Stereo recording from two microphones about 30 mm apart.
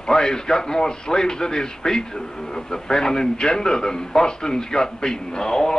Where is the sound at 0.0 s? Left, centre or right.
Left.